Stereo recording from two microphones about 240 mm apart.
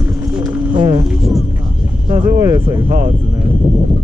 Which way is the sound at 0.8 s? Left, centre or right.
Centre.